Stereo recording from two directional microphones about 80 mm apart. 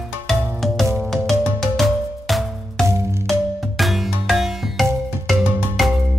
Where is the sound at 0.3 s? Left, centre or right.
Centre.